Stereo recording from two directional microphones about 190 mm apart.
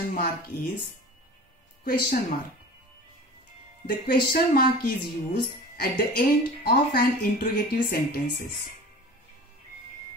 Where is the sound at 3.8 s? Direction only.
55° left (ahead or behind).